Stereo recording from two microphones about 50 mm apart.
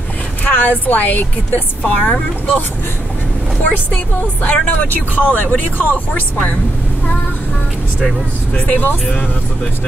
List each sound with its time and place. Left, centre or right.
0.4 s speech: left
2.0 s speech: left
4.5 s speech: left
8.5 s speech: left